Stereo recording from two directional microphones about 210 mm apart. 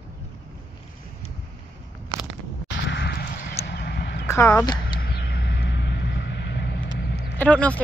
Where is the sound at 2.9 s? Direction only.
50° left (ahead or behind).